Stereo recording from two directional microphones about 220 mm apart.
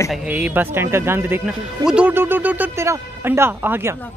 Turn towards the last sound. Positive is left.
turn(degrees=-10)  # may be behind; listen again after turning